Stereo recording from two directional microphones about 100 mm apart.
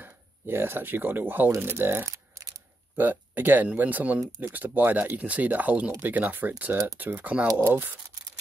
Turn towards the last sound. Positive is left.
turn(degrees=-15)  # may be behind; listen again after turning